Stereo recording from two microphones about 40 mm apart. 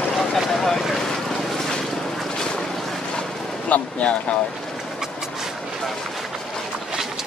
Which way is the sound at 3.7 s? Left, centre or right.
Left.